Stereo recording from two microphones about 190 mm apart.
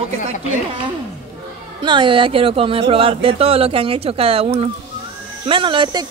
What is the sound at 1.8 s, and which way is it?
Speech, 25° right (ahead or behind).